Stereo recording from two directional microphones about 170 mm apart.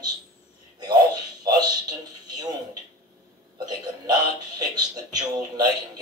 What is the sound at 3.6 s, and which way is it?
Music, 25° right (ahead or behind).